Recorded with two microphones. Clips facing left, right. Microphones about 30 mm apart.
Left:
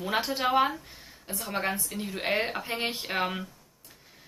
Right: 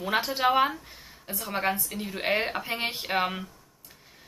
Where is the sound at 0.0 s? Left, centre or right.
Centre.